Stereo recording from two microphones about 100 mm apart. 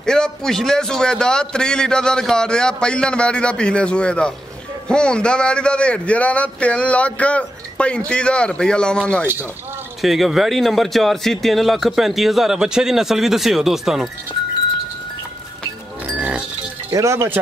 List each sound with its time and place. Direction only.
0.0 s a man's voice: 5° left (ahead or behind)
9.2 s speech: 20° right (ahead or behind)
10.0 s speech: centre (ahead or behind)
16.2 s goat: 15° right (ahead or behind)
16.9 s speech: 30° right (ahead or behind)